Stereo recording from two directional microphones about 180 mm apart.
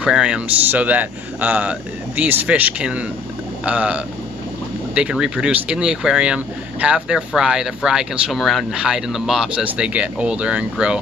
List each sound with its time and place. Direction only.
0.0 s speech: 5° right (ahead or behind)